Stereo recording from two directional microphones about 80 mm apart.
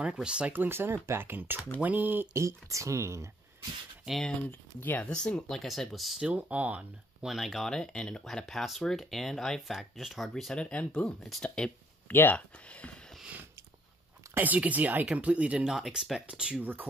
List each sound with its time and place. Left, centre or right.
0.0 s speech: centre
0.5 s speech: right
2.3 s speech: right
4.5 s speech: left
5.1 s speech: centre
7.2 s speech: centre
12.1 s speech: left
14.3 s speech: right
15.7 s speech: centre